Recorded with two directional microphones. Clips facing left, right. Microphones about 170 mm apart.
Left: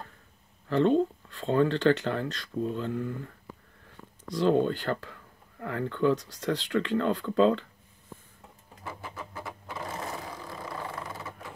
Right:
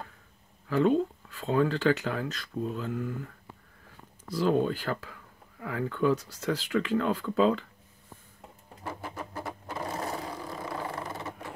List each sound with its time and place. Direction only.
0.7 s speech: 5° right (ahead or behind)
4.3 s speech: 5° right (ahead or behind)
8.8 s sewing machine: 40° right (ahead or behind)
10.6 s vehicle: 20° right (ahead or behind)